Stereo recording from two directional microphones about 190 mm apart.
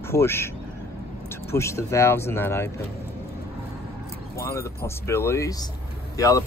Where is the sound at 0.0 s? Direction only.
15° left (ahead or behind).